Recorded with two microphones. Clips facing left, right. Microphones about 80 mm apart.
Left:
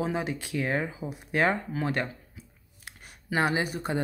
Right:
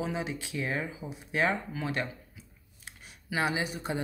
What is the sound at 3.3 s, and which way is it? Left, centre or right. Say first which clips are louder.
Speech: left 4 dB; left.